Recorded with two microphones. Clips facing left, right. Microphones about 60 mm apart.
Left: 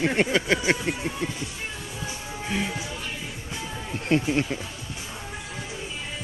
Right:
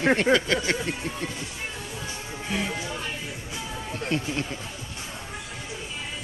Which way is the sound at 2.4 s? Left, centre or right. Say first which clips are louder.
Left 1 dB; centre.